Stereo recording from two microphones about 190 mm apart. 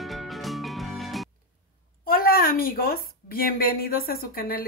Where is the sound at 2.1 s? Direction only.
50° left (ahead or behind).